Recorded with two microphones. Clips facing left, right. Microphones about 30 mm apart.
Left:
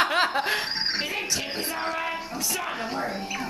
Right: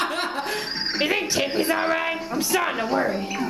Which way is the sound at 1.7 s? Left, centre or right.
Right.